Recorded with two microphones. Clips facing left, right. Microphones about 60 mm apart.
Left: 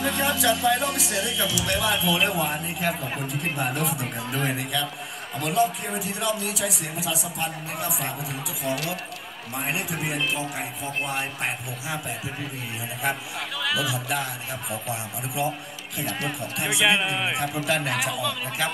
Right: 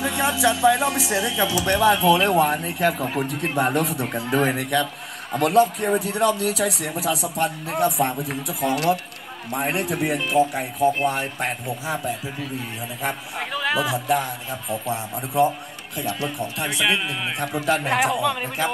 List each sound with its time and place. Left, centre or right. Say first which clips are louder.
0.0 s speech: right 3 dB; centre; by 2.2 s right
2.3 s a man's voice: right 7 dB; right
11.6 s a man's voice: right 5 dB; right
13.0 s a man's voice: even; right
16.6 s speech: left 1 dB; centre
17.8 s a man's voice: right 6 dB; right